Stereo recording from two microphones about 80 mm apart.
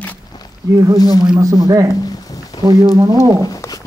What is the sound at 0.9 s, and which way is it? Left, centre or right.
Speech, left.